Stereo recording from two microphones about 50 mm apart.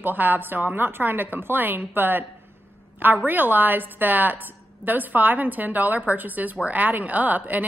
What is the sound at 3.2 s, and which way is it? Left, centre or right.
Speech, right.